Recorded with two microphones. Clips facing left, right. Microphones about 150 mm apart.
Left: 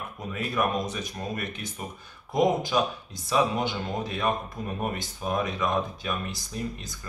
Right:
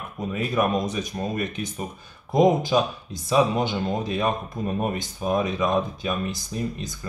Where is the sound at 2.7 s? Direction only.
20° right (ahead or behind).